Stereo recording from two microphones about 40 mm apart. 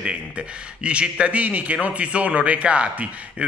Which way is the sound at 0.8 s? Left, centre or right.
Right.